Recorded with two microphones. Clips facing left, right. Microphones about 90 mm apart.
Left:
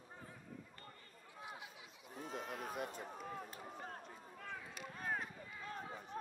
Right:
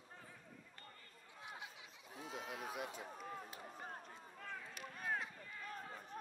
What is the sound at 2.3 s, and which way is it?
Speech, 5° right (ahead or behind).